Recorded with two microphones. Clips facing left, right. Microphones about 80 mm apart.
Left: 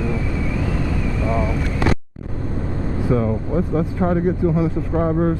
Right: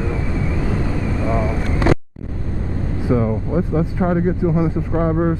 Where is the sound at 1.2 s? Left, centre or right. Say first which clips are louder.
Even; right.